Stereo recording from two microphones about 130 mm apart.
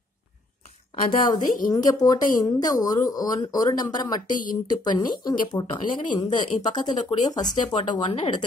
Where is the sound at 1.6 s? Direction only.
30° left (ahead or behind).